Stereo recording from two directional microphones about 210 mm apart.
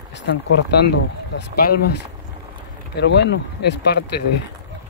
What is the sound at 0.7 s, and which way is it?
Speech, 55° left (ahead or behind).